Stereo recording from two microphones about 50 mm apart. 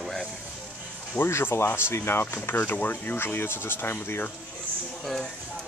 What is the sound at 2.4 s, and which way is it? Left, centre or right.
Speech, left.